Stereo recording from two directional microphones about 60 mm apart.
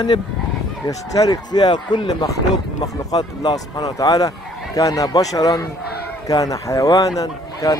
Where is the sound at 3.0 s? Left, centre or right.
Left.